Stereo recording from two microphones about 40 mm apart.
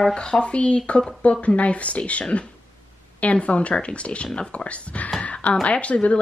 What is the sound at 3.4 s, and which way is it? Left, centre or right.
Speech, left.